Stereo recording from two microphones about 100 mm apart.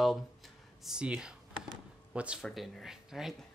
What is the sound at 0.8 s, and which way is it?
Speech, 10° right (ahead or behind).